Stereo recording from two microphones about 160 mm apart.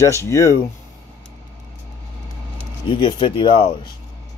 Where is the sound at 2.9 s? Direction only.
30° left (ahead or behind).